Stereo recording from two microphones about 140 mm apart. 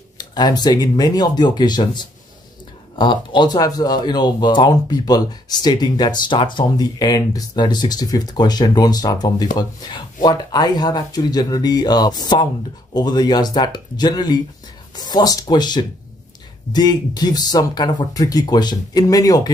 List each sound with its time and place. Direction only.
0.2 s speech: 30° left (ahead or behind)